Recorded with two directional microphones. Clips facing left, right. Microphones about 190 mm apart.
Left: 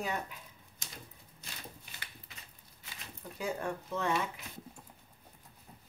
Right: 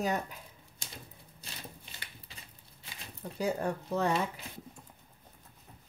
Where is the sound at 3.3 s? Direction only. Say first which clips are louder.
Right 4 dB; 35° right (ahead or behind).